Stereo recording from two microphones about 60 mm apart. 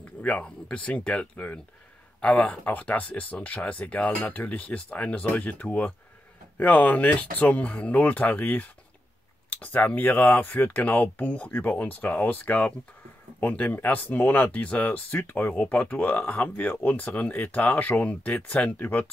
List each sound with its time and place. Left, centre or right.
0.2 s speech: left